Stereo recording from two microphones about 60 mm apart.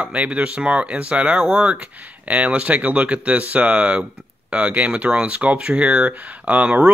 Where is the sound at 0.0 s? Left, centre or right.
Right.